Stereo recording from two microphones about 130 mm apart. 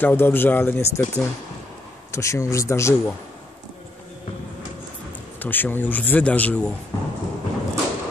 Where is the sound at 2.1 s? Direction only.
25° left (ahead or behind).